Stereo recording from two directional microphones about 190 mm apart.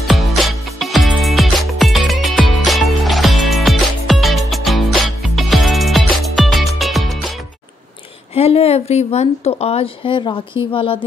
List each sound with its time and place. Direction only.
0.0 s music: centre (ahead or behind)
8.4 s speech: 30° left (ahead or behind)